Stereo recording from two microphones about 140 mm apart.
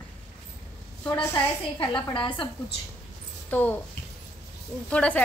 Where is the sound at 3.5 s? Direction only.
10° left (ahead or behind).